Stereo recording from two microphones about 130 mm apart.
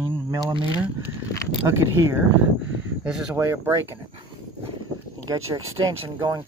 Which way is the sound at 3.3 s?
20° right (ahead or behind).